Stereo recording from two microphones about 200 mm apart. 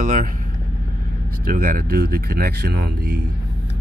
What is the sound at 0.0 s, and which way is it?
Vehicle, 40° right (ahead or behind).